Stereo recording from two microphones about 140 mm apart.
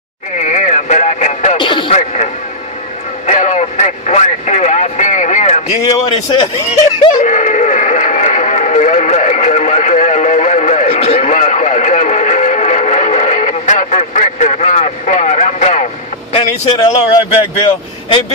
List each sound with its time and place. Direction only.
0.4 s radio: 60° left (ahead or behind)
1.6 s radio: 35° left (ahead or behind)
1.9 s radio: 50° left (ahead or behind)
3.3 s vehicle: 55° left (ahead or behind)
7.2 s radio: 65° left (ahead or behind)
10.9 s radio: 45° left (ahead or behind)
11.2 s music: 60° left (ahead or behind)
16.3 s speech: 45° left (ahead or behind)